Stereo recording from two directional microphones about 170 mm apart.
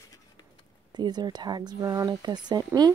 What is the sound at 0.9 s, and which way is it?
Speech, 25° right (ahead or behind).